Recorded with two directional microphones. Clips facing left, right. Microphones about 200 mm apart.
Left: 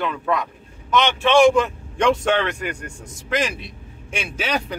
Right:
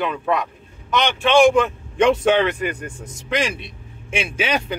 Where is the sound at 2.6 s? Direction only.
20° right (ahead or behind).